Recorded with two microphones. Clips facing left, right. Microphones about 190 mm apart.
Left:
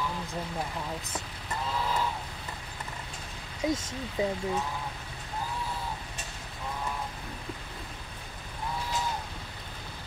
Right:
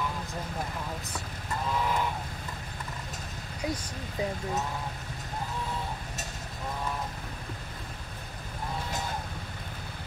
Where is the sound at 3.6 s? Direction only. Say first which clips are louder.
Left 4 dB; 20° left (ahead or behind).